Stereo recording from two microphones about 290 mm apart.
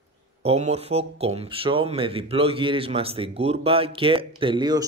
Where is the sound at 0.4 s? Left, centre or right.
Right.